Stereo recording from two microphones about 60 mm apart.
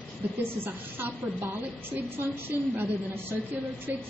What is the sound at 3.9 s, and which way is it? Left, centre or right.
Speech, right.